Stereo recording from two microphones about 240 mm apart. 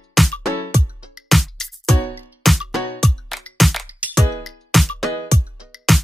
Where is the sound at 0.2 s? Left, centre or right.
Centre.